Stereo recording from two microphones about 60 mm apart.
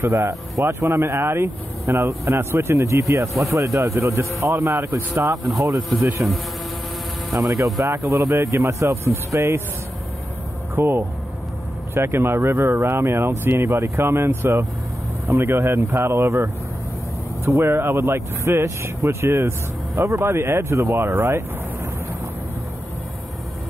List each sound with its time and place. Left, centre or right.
0.0 s speech: right
6.2 s speech: right
7.8 s speech: right
10.7 s speech: right
17.5 s speech: right
20.9 s speech: right